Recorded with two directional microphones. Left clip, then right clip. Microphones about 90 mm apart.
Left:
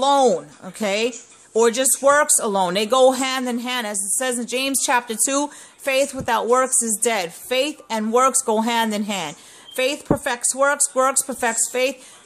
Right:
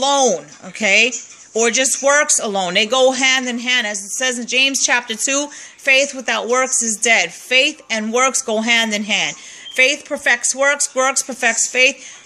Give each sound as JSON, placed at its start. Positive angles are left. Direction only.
{"t": 0.0, "sound": "speech", "side_deg": 30}